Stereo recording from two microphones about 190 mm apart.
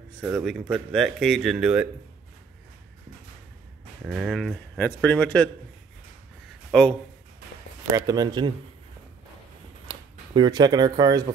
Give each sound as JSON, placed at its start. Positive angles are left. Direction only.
{"t": 0.4, "sound": "speech", "side_deg": 0}
{"t": 4.0, "sound": "speech", "side_deg": -5}
{"t": 6.7, "sound": "speech", "side_deg": 5}
{"t": 7.9, "sound": "speech", "side_deg": -20}
{"t": 9.8, "sound": "speech", "side_deg": -25}